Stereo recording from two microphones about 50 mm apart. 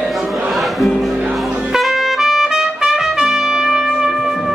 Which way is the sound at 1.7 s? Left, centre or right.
Centre.